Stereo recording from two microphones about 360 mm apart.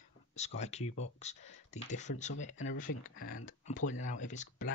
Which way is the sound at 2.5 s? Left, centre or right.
Left.